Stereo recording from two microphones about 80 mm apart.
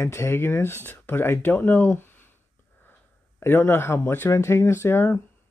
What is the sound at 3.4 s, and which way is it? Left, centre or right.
Speech, left.